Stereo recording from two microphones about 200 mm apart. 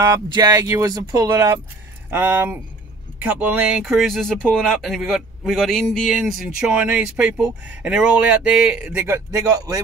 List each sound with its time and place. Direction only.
0.0 s a man's voice: 20° right (ahead or behind)